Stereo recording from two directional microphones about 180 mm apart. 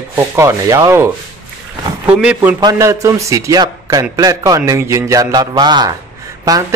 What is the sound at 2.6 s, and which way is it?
A man's voice, 15° right (ahead or behind).